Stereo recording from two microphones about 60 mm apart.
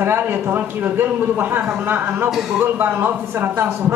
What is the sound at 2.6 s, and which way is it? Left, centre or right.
A man's voice, right.